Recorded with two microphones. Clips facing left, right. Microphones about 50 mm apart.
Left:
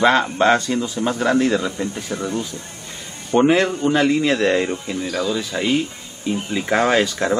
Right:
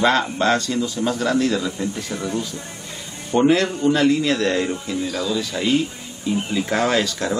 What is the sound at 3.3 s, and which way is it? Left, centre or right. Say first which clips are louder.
A man's voice: left 1 dB; left.